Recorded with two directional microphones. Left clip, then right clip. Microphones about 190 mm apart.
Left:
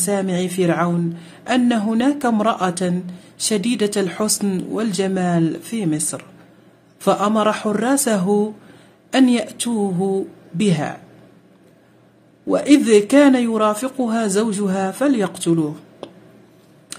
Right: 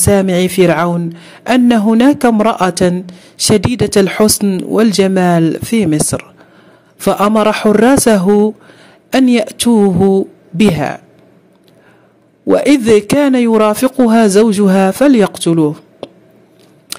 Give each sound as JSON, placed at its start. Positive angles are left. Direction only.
{"t": 0.0, "sound": "speech", "side_deg": -45}
{"t": 12.4, "sound": "speech", "side_deg": -45}